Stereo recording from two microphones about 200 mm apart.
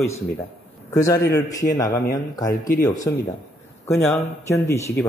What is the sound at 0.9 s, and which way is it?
A man's voice, 15° left (ahead or behind).